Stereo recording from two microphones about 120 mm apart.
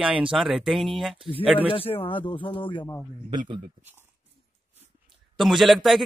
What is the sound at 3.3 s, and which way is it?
Speech, 40° right (ahead or behind).